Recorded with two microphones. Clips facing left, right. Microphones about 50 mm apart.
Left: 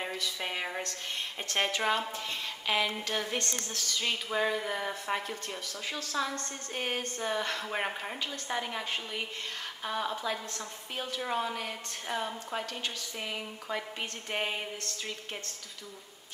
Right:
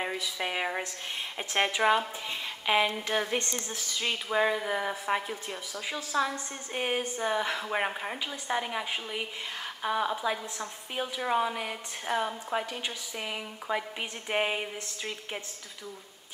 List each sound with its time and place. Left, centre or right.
0.0 s speech: centre